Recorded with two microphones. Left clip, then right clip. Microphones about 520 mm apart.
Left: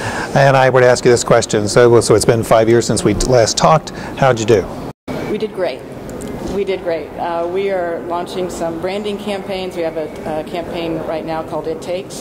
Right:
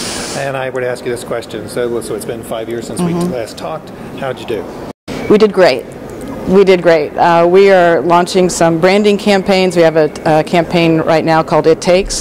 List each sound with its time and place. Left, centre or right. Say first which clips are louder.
0.4 s speech: left 9 dB; left
5.4 s speech: right 11 dB; right